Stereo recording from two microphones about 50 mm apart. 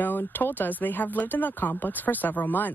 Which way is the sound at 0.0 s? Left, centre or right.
Left.